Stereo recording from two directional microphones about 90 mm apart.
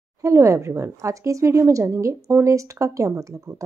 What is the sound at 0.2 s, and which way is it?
Speech, 35° right (ahead or behind).